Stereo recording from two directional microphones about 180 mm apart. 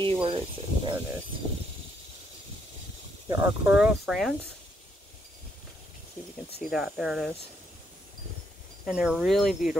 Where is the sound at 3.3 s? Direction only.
10° right (ahead or behind).